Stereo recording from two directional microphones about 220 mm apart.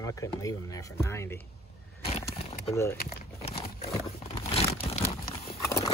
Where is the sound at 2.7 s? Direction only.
15° left (ahead or behind).